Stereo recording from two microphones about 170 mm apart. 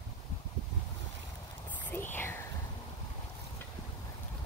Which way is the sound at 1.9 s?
10° left (ahead or behind).